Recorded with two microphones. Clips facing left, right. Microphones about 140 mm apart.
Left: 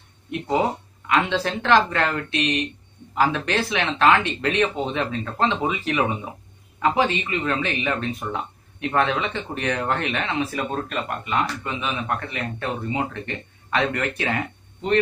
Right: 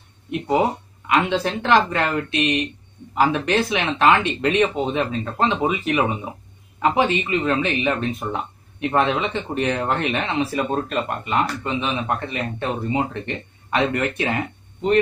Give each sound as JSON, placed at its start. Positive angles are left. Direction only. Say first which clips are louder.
{"t": 1.0, "sound": "speech", "louder": "right 2 dB", "side_deg": -15}
{"t": 10.7, "sound": "a man's voice", "louder": "right 4 dB", "side_deg": -30}